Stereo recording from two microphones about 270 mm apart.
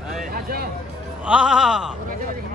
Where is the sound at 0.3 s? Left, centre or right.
Right.